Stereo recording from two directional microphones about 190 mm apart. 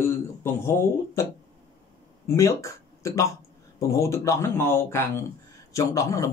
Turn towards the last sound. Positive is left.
turn(degrees=15)  # may be behind; listen again after turning